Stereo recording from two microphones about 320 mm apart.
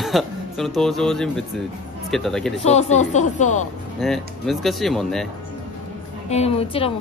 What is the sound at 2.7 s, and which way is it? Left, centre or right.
Speech, left.